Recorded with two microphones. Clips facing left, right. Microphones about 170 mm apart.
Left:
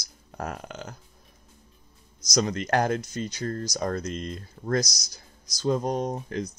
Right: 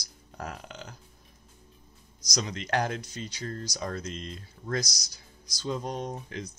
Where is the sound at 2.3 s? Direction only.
50° left (ahead or behind).